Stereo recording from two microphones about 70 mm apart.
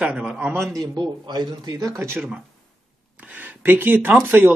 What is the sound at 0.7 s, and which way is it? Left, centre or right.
Speech, right.